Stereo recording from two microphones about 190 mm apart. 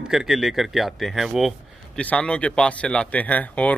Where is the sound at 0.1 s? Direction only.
Centre (ahead or behind).